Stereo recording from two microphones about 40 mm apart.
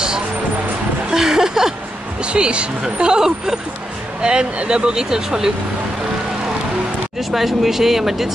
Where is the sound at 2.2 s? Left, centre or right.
Right.